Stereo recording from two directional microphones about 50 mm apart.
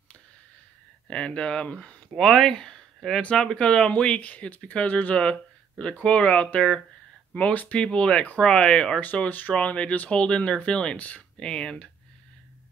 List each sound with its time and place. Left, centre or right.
1.0 s speech: centre
2.0 s speech: centre; by 5.2 s left
5.2 s speech: centre
7.5 s speech: left
7.8 s speech: left
9.0 s speech: left
11.3 s speech: centre